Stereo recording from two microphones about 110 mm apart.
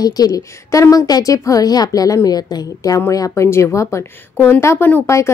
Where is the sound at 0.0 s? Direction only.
35° left (ahead or behind).